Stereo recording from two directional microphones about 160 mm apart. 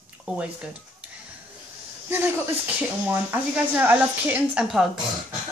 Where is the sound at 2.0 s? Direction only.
15° right (ahead or behind).